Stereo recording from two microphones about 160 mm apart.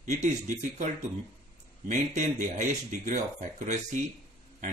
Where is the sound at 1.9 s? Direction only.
50° right (ahead or behind).